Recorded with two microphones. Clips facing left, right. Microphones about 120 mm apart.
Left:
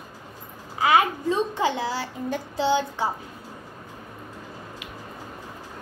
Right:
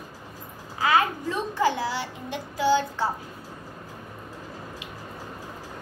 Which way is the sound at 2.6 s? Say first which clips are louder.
Right 1 dB; 20° left (ahead or behind).